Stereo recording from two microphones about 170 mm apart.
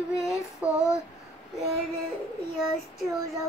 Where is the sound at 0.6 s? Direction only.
10° right (ahead or behind).